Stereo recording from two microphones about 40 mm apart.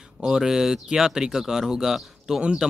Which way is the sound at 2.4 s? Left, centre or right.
Right.